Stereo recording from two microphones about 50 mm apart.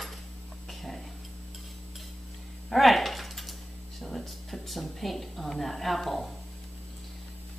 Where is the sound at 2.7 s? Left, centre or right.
Centre.